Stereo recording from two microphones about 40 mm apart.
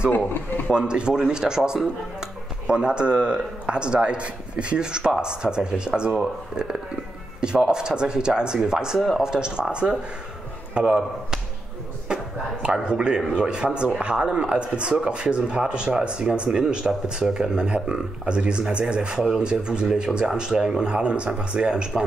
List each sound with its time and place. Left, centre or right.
0.1 s speech: left
0.7 s speech: right
7.3 s speech: right
10.9 s speech: centre
12.8 s speech: right